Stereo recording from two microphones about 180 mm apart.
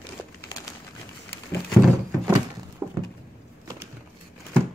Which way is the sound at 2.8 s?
15° right (ahead or behind).